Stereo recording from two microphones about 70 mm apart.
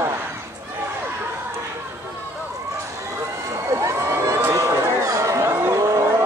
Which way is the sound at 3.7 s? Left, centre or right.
Right.